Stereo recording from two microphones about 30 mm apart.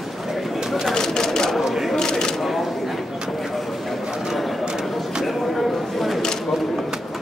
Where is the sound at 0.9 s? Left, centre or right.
Centre.